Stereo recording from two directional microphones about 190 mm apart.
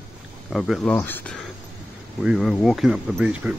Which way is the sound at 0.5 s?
Centre (ahead or behind).